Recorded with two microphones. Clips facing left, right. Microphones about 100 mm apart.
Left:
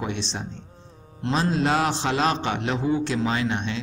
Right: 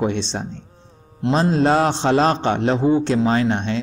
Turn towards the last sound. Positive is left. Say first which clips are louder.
# right 6 dB
turn(degrees=-40)  # may be behind; listen again after turning